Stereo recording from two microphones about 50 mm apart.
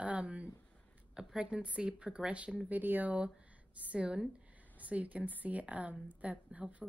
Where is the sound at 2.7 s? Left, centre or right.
Right.